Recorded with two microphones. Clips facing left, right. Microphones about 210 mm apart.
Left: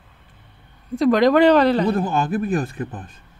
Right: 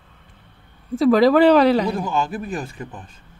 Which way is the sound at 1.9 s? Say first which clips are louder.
Left 3 dB; 55° left (ahead or behind).